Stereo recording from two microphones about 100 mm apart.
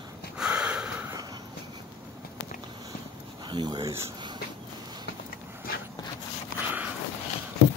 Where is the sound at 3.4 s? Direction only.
50° right (ahead or behind).